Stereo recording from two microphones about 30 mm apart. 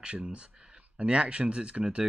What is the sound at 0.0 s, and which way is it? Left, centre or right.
Speech, right.